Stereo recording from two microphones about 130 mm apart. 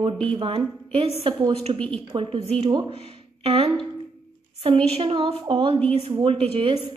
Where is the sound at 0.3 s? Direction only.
40° right (ahead or behind).